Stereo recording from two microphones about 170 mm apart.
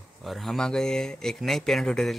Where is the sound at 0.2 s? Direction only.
Centre (ahead or behind).